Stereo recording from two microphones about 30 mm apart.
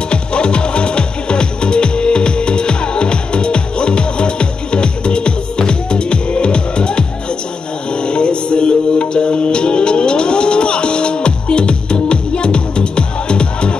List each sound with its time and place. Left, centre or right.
0.1 s music: left